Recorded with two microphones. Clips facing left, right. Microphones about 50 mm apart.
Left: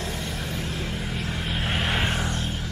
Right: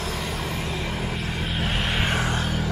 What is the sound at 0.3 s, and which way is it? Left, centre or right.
Vehicle, right.